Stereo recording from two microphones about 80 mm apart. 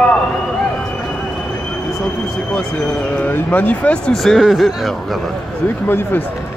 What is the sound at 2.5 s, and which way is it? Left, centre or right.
Speech, centre.